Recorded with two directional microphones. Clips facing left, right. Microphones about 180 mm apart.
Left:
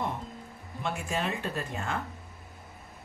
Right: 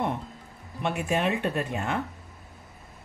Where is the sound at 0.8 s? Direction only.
65° right (ahead or behind).